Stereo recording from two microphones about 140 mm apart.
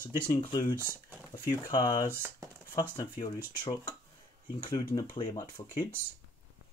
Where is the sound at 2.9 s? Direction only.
30° left (ahead or behind).